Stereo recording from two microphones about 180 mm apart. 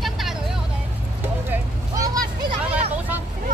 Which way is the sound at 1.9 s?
20° right (ahead or behind).